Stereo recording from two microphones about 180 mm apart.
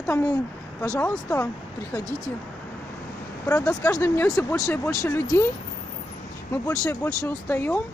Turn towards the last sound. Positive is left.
turn(degrees=10)  # may be behind; listen again after turning